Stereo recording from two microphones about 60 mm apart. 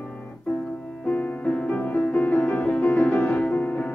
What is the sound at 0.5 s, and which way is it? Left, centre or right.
Music, left.